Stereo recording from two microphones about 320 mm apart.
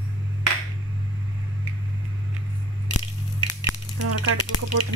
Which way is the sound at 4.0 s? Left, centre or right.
Right.